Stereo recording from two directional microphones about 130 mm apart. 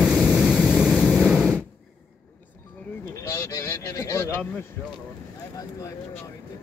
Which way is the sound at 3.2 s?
25° left (ahead or behind).